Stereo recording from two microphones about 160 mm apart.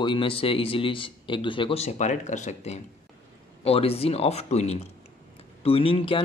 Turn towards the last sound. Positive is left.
turn(degrees=35)  # may be behind; listen again after turning